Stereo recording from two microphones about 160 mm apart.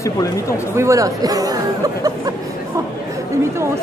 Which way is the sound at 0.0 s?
20° left (ahead or behind).